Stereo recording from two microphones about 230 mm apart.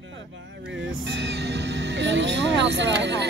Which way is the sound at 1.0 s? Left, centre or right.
Right.